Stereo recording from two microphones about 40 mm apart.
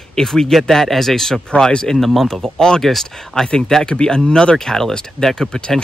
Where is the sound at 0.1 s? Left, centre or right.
Centre.